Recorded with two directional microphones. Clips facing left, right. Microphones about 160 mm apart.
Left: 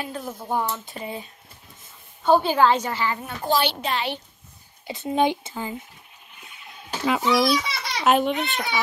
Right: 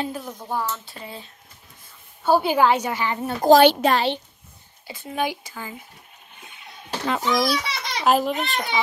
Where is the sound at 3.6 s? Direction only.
50° right (ahead or behind).